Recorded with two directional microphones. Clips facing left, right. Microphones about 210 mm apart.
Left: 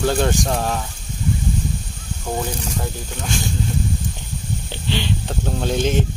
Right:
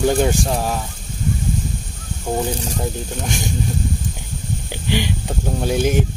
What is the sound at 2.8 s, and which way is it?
Speech, 20° right (ahead or behind).